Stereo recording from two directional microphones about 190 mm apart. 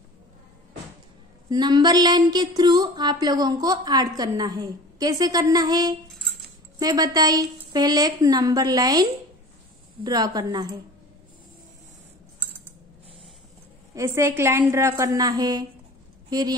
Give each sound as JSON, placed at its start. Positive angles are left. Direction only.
{"t": 1.5, "sound": "a woman's voice", "side_deg": -20}
{"t": 10.0, "sound": "a woman's voice", "side_deg": -20}
{"t": 13.9, "sound": "a woman's voice", "side_deg": -15}